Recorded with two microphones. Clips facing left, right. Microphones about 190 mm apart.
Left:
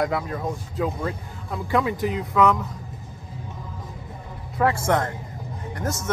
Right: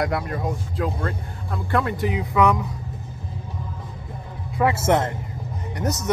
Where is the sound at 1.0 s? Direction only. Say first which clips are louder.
Right 1 dB; 5° left (ahead or behind).